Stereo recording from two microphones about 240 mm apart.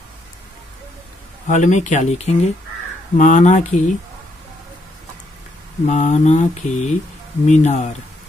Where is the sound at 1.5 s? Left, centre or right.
Left.